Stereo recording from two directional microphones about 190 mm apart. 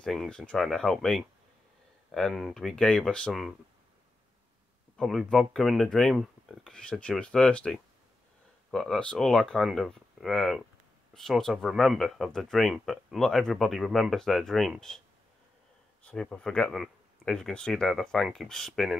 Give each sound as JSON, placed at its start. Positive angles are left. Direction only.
{"t": 0.0, "sound": "speech", "side_deg": 5}
{"t": 4.9, "sound": "speech", "side_deg": 0}
{"t": 16.0, "sound": "speech", "side_deg": 5}